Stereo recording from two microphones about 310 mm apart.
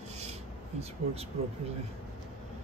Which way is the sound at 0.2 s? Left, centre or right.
Right.